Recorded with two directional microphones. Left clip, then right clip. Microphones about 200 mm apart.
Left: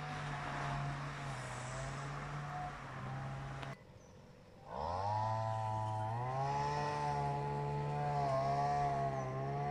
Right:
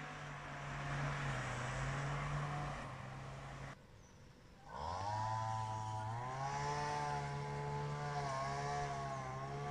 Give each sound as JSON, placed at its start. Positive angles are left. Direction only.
{"t": 1.2, "sound": "vehicle", "side_deg": 25}
{"t": 4.7, "sound": "chainsaw", "side_deg": 20}